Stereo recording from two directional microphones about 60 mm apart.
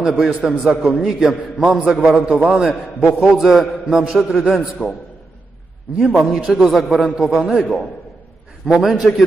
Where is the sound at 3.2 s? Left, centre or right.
Centre.